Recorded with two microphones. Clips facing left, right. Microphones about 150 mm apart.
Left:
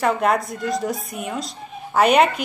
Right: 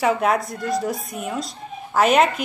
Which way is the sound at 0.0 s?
Centre (ahead or behind).